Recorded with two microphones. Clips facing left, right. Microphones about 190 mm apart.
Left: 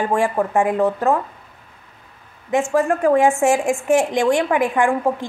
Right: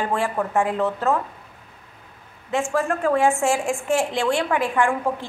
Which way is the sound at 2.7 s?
15° left (ahead or behind).